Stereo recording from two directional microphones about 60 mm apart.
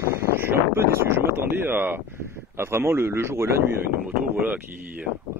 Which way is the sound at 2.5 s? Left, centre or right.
Right.